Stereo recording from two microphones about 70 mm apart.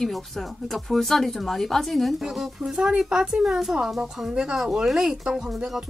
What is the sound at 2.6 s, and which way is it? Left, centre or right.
Speech, centre.